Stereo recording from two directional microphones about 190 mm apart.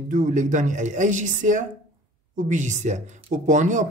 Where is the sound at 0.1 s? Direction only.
45° right (ahead or behind).